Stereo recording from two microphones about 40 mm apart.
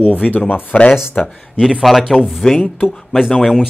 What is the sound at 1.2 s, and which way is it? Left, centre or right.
Speech, centre.